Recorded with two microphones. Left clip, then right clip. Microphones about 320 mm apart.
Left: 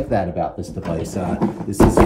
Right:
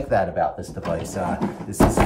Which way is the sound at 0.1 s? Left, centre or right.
Right.